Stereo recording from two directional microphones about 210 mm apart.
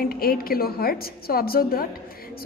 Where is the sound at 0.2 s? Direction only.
45° left (ahead or behind).